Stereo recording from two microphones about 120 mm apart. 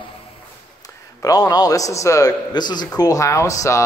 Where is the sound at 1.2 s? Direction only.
30° left (ahead or behind).